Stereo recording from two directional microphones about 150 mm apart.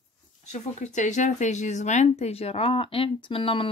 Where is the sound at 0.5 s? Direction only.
55° left (ahead or behind).